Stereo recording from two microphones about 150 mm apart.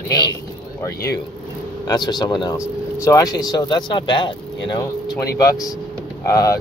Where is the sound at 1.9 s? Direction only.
30° left (ahead or behind).